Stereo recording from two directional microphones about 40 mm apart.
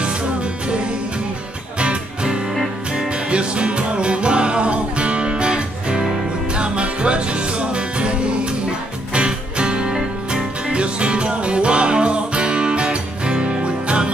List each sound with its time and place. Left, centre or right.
1.8 s music: right